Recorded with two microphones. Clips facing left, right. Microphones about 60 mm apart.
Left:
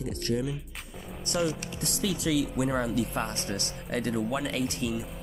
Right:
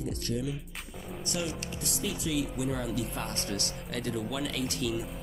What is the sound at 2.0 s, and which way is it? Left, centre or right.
Speech, left.